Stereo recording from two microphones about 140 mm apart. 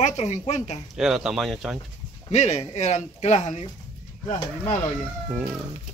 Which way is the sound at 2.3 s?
55° left (ahead or behind).